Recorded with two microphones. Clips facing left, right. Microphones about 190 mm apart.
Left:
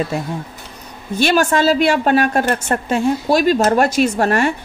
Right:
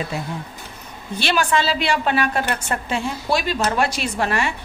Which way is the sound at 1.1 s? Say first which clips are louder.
Left 5 dB; 45° left (ahead or behind).